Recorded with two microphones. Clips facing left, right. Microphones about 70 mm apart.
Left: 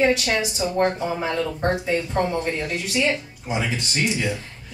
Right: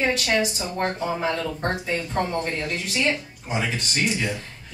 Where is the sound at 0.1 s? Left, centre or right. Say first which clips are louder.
Even; centre.